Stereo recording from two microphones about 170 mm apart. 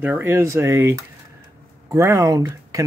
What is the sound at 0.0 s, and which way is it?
Speech, 10° right (ahead or behind).